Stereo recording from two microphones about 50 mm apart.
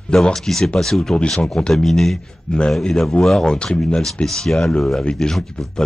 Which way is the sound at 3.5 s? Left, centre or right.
Centre.